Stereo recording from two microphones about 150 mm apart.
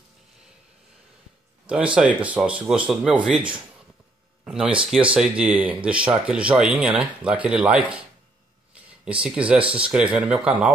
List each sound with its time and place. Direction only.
2.0 s speech: 10° right (ahead or behind)
4.5 s speech: 5° right (ahead or behind)
9.0 s speech: 5° right (ahead or behind)